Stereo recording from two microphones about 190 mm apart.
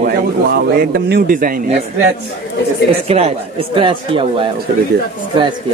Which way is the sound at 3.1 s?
30° right (ahead or behind).